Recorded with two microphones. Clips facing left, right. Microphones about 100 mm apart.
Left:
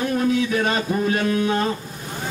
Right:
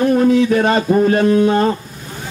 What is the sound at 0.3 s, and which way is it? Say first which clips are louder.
Speech: right 8 dB; 40° right (ahead or behind).